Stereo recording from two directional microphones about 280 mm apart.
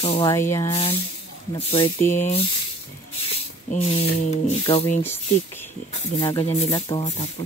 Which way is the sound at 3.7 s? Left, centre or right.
Left.